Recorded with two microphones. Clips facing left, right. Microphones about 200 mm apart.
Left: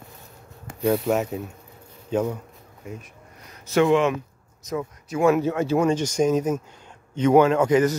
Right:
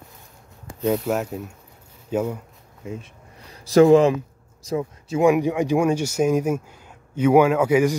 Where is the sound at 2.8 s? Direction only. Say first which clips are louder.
Right 4 dB; 25° right (ahead or behind).